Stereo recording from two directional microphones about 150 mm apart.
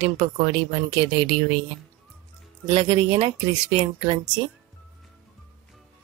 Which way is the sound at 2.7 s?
35° right (ahead or behind).